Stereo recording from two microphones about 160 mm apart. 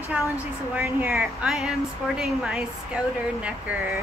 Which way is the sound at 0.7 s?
15° right (ahead or behind).